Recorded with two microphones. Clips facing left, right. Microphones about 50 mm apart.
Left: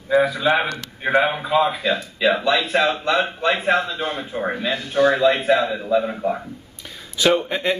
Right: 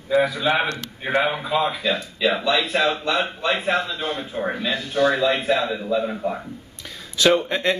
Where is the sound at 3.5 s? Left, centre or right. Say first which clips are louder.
Left 2 dB; left.